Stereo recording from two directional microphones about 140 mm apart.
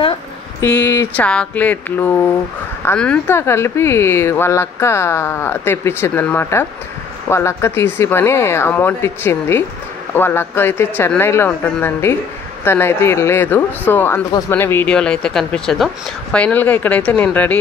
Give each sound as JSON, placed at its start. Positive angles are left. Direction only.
{"t": 0.6, "sound": "speech", "side_deg": 10}